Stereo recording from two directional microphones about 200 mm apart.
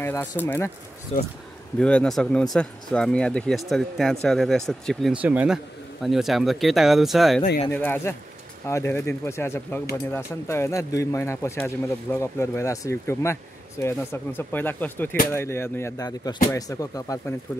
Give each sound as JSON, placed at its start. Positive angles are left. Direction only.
{"t": 0.0, "sound": "speech", "side_deg": 15}
{"t": 1.1, "sound": "speech", "side_deg": 35}
{"t": 1.8, "sound": "speech", "side_deg": 5}